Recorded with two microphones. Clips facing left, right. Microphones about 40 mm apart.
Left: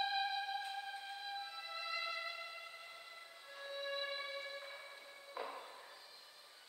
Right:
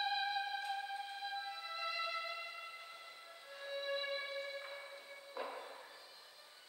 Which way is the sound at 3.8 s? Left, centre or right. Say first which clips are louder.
Right 2 dB; centre.